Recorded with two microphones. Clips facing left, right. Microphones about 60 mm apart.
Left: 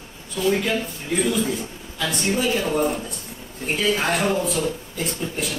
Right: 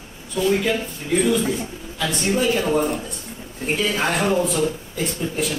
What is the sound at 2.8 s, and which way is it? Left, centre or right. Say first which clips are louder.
A man's voice: even; centre.